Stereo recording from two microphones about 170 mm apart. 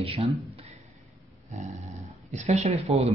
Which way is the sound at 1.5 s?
45° right (ahead or behind).